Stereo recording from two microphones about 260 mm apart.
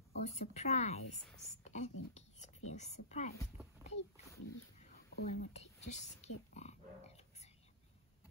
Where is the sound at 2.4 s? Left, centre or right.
Left.